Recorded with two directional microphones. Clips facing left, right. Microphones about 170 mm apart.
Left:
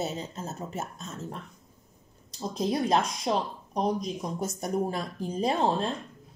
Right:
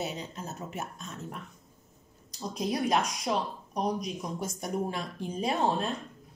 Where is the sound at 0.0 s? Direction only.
35° left (ahead or behind).